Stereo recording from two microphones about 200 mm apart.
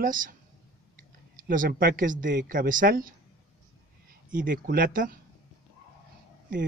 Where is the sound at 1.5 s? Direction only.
45° right (ahead or behind).